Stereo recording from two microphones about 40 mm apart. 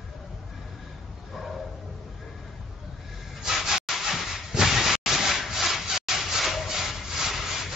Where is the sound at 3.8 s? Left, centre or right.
Centre.